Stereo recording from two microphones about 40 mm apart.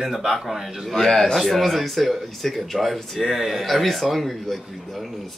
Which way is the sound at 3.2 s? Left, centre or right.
Centre.